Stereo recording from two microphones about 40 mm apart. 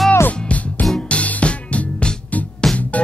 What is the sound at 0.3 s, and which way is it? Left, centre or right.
Music, left.